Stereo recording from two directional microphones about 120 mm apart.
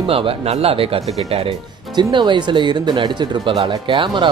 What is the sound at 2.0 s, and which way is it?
Speech, 40° right (ahead or behind).